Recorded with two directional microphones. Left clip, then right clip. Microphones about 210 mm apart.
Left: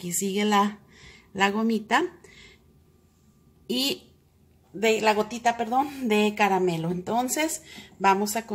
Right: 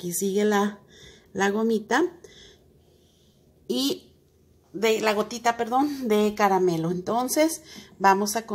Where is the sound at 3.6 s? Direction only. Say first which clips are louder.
Even; 5° right (ahead or behind).